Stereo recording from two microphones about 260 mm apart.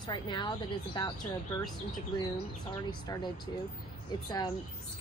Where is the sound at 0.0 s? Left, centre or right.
Centre.